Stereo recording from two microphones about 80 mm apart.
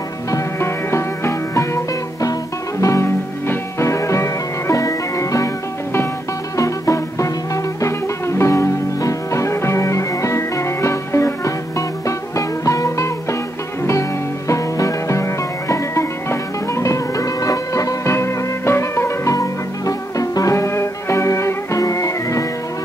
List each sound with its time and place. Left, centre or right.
0.3 s music: left
2.8 s music: left
6.5 s music: left
14.5 s music: left
19.3 s music: left